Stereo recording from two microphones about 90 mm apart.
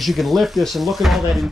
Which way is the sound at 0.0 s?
Centre (ahead or behind).